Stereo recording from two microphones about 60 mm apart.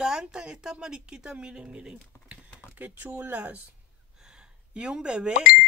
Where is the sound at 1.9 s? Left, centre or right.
Right.